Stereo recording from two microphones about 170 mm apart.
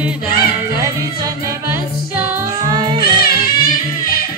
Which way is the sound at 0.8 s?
20° right (ahead or behind).